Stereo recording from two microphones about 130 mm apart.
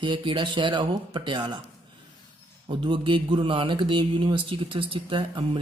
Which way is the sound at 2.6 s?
40° right (ahead or behind).